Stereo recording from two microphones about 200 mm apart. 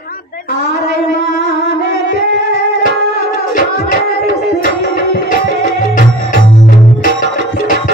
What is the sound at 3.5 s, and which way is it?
Music, 40° left (ahead or behind).